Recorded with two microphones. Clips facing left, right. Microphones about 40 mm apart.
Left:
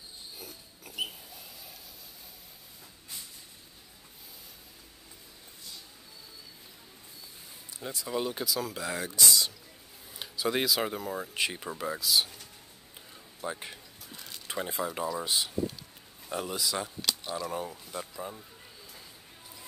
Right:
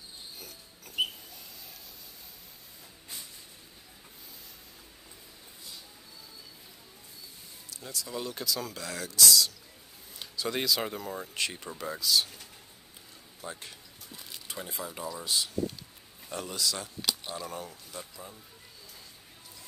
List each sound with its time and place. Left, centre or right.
0.4 s pig: centre
7.7 s speech: left; by 8.8 s centre
8.8 s speech: left
10.1 s speech: centre
13.4 s speech: centre
14.0 s a sound: centre
14.8 s speech: left
17.0 s a sound: centre
17.5 s speech: centre